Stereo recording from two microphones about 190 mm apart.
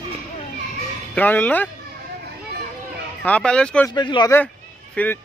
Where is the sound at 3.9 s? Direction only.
20° left (ahead or behind).